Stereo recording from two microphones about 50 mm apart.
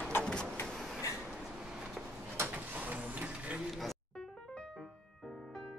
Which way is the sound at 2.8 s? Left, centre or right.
Right.